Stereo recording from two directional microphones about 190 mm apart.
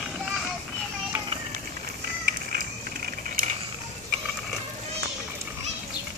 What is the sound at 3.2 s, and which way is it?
Vehicle, 45° right (ahead or behind).